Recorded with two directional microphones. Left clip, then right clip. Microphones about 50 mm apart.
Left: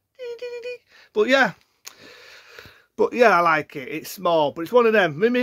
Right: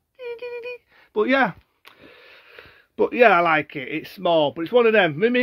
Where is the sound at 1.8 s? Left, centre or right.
Left.